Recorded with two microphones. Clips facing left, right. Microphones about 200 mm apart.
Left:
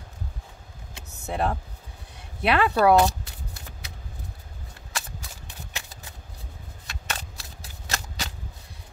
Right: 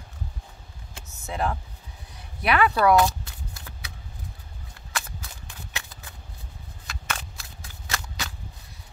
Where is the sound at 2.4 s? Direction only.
25° left (ahead or behind).